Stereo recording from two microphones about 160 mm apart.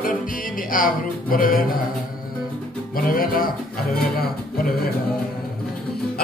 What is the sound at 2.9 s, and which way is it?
Music, 65° left (ahead or behind).